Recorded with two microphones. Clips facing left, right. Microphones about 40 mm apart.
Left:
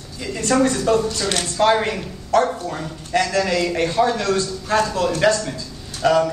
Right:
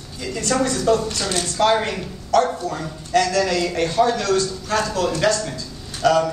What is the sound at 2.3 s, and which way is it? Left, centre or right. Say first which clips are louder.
A man's voice: even; left.